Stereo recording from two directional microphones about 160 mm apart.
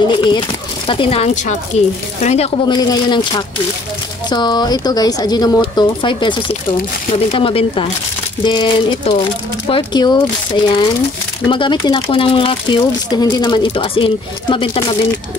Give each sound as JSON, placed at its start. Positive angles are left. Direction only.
{"t": 0.1, "sound": "speech", "side_deg": 30}
{"t": 2.7, "sound": "speech", "side_deg": 25}